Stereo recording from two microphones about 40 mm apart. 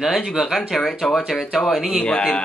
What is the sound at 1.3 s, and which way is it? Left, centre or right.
Speech, centre.